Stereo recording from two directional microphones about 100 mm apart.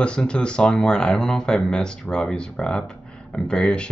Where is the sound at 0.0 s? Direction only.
10° left (ahead or behind).